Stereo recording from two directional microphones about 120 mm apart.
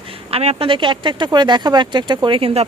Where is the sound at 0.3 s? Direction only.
55° right (ahead or behind).